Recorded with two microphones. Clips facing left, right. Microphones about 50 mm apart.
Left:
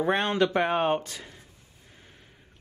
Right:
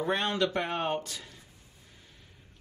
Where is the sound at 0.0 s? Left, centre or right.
Left.